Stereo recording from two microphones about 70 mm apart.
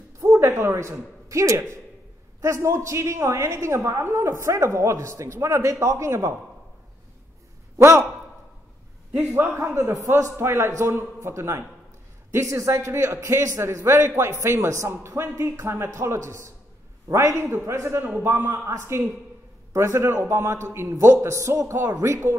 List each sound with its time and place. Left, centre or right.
0.2 s a woman's voice: right
7.7 s a man's voice: right
9.8 s a woman's voice: right